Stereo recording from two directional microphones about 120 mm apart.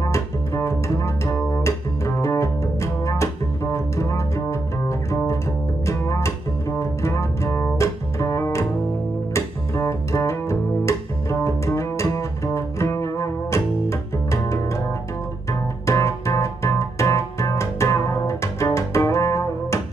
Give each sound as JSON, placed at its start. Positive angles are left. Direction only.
{"t": 0.0, "sound": "double bass", "side_deg": 25}
{"t": 3.7, "sound": "music", "side_deg": 25}
{"t": 9.3, "sound": "double bass", "side_deg": 25}
{"t": 15.9, "sound": "music", "side_deg": 25}